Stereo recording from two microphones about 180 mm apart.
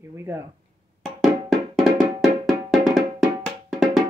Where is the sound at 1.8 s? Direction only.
Centre (ahead or behind).